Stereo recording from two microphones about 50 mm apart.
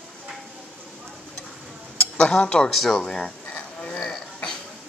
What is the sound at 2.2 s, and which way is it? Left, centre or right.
Speech, left.